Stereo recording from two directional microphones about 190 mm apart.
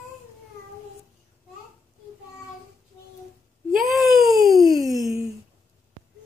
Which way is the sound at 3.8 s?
Centre (ahead or behind).